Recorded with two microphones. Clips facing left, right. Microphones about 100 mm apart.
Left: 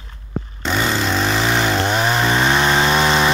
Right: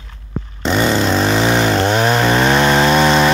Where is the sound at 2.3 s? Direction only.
5° right (ahead or behind).